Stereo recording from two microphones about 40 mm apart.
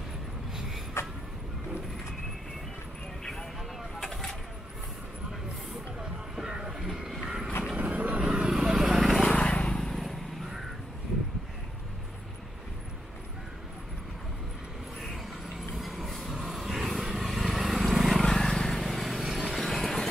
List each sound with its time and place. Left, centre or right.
1.0 s vehicle: left
4.0 s vehicle: centre
5.9 s a sound: centre
7.7 s vehicle: right
8.5 s vehicle: centre
9.3 s vehicle: left
9.8 s vehicle: centre
15.6 s vehicle: centre
18.2 s vehicle: centre
18.8 s a sound: centre